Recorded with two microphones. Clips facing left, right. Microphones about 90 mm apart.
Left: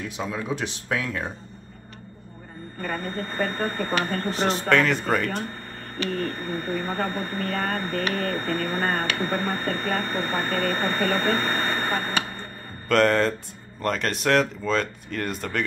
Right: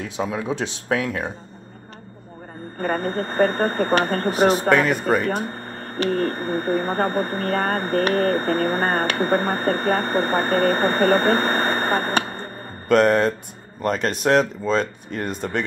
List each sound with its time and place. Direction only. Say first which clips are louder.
0.2 s speech: right 4 dB; 20° right (ahead or behind)
2.8 s speech: right 7 dB; 45° right (ahead or behind)
4.6 s speech: right 3 dB; 15° right (ahead or behind)
5.5 s speech: right 5 dB; 40° right (ahead or behind)
12.8 s speech: right 4 dB; 20° right (ahead or behind)